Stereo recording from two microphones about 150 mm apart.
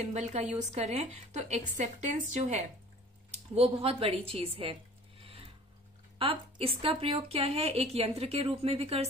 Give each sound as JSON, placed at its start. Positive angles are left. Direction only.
{"t": 0.0, "sound": "a woman's voice", "side_deg": -50}
{"t": 3.5, "sound": "a woman's voice", "side_deg": -40}
{"t": 5.2, "sound": "a sound", "side_deg": -40}
{"t": 6.1, "sound": "a woman's voice", "side_deg": -40}